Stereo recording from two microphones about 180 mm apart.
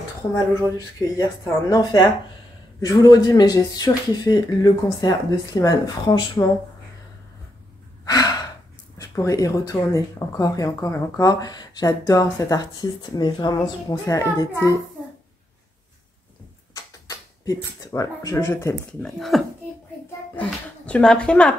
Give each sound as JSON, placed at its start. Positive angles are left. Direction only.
{"t": 0.7, "sound": "speech", "side_deg": 20}
{"t": 8.0, "sound": "sigh", "side_deg": 20}
{"t": 8.9, "sound": "speech", "side_deg": 15}
{"t": 16.7, "sound": "speech", "side_deg": 20}
{"t": 19.0, "sound": "speech", "side_deg": 0}
{"t": 20.8, "sound": "speech", "side_deg": 5}